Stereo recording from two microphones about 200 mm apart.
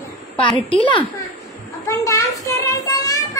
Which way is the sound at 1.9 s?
15° left (ahead or behind).